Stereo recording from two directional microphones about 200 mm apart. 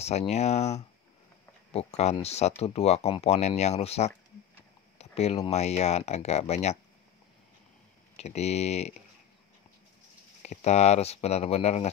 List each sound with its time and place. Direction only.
0.0 s speech: 30° left (ahead or behind)
4.9 s a sound: 30° left (ahead or behind)
5.5 s speech: 35° left (ahead or behind)
8.2 s speech: 35° left (ahead or behind)
10.4 s speech: 35° left (ahead or behind)